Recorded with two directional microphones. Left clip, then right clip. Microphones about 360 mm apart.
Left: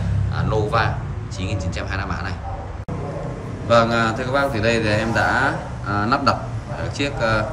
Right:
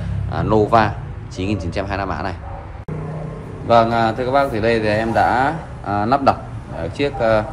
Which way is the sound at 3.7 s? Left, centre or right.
Centre.